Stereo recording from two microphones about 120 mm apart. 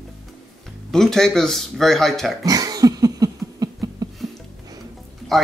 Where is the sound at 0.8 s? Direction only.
5° left (ahead or behind).